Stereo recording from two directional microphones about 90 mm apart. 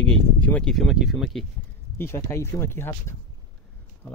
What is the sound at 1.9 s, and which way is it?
Speech, 30° left (ahead or behind).